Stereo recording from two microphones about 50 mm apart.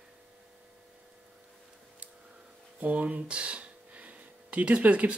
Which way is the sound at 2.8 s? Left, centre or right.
Right.